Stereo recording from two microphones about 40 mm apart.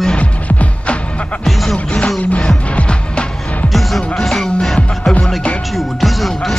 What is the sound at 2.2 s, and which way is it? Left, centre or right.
Music, left.